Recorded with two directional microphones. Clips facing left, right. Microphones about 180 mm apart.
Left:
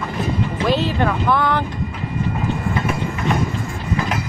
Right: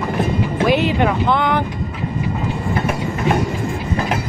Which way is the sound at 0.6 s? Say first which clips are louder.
Right 3 dB; 15° right (ahead or behind).